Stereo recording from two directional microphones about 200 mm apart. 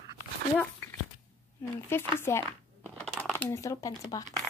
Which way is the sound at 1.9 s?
10° left (ahead or behind).